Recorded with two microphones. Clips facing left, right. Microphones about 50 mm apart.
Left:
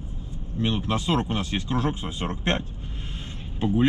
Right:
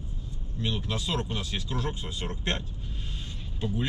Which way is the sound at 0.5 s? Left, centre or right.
Left.